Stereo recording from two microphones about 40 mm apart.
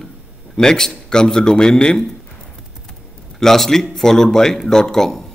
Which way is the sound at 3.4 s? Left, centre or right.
Centre.